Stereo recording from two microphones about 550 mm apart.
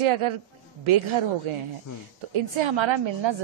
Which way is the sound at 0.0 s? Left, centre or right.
Right.